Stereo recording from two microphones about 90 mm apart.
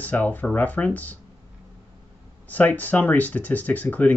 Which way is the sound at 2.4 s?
20° left (ahead or behind).